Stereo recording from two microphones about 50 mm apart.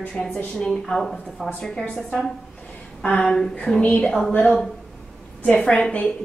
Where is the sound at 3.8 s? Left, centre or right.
Left.